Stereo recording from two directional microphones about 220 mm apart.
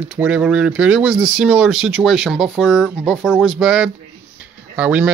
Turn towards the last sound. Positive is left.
turn(degrees=-10)  # may be behind; listen again after turning